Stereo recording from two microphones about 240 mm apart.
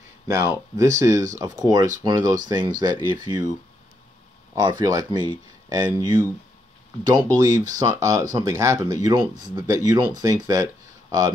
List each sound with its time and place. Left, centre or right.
0.3 s speech: centre
4.6 s speech: centre